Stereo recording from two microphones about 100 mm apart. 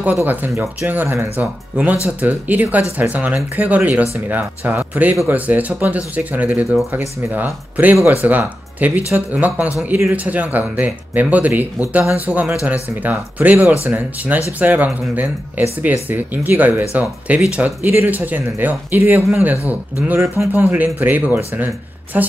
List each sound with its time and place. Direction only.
0.0 s speech: 20° right (ahead or behind)